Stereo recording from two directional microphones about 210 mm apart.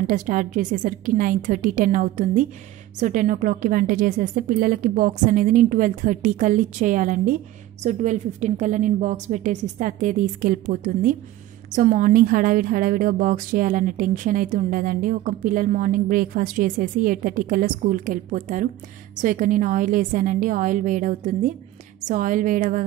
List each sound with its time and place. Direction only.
0.0 s a woman's voice: 40° right (ahead or behind)